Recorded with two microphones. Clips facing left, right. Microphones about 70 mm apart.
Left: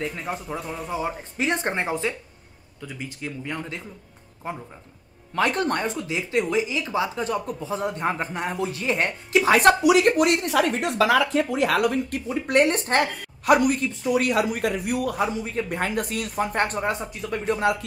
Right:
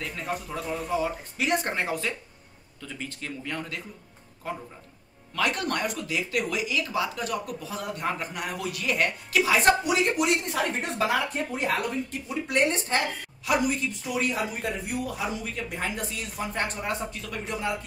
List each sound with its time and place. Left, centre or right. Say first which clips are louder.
0.0 s speech: left 3 dB; centre
0.9 s speech: left 1 dB; left
2.8 s speech: left 3 dB; centre; by 9.5 s left
9.5 s speech: left 6 dB; left
10.1 s speech: left 5 dB; left
12.4 s speech: left 5 dB; left